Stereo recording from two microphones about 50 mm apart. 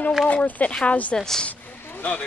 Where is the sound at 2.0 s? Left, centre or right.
Left.